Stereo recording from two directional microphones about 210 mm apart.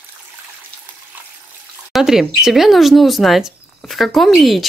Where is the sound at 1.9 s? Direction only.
Centre (ahead or behind).